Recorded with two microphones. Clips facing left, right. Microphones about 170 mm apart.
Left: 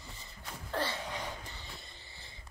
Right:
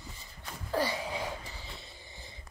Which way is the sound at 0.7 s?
10° right (ahead or behind).